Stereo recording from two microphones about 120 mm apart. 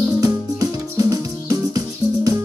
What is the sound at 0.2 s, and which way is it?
Music, 30° right (ahead or behind).